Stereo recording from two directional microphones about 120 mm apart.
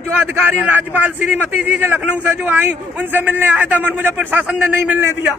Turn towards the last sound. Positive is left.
turn(degrees=-10)  # may be behind; listen again after turning